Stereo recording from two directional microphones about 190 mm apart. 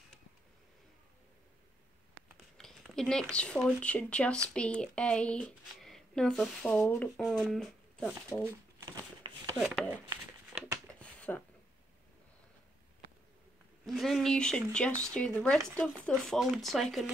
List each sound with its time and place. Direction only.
2.5 s speech: 5° left (ahead or behind)
7.2 s speech: centre (ahead or behind)
8.3 s speech: 15° left (ahead or behind)
9.2 s a sound: 25° right (ahead or behind)
9.6 s speech: 5° right (ahead or behind)
10.9 s a sound: 5° left (ahead or behind)
13.8 s speech: centre (ahead or behind)